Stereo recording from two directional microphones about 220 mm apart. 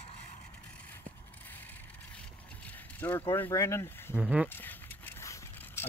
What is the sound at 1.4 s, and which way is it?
Vehicle, 10° left (ahead or behind).